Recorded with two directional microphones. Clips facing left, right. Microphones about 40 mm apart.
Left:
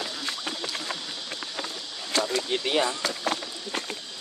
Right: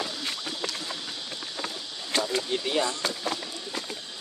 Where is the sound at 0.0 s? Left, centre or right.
Centre.